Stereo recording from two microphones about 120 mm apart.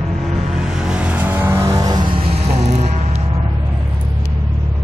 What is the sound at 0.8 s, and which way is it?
Vehicle, 10° right (ahead or behind).